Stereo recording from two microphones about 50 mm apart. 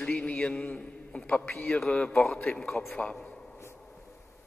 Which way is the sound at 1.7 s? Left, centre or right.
Centre.